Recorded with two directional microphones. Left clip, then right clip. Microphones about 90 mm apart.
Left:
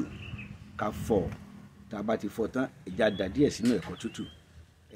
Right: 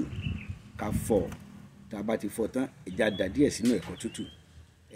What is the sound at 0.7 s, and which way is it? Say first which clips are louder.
Speech: even; 35° left (ahead or behind).